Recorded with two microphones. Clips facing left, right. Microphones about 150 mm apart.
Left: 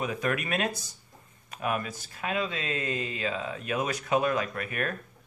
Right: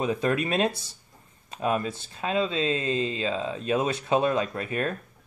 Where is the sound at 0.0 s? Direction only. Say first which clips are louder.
Right 5 dB; 25° right (ahead or behind).